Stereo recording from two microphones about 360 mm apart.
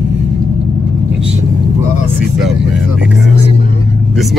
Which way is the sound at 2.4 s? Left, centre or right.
Centre.